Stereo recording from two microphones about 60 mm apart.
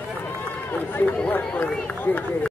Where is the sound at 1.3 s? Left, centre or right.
Left.